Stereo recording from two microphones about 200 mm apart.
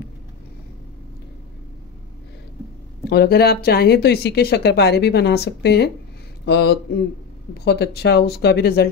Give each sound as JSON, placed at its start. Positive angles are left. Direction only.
{"t": 3.1, "sound": "speech", "side_deg": 55}